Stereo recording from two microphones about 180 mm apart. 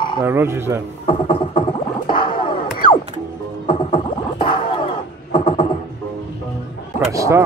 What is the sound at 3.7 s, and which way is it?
Music, 30° left (ahead or behind).